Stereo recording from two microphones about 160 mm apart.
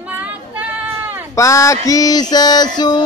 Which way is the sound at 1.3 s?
20° left (ahead or behind).